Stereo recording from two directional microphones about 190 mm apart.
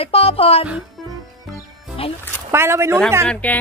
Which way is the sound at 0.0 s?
30° left (ahead or behind).